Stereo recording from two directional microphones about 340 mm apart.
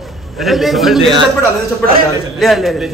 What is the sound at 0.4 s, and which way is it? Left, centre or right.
Speech, centre.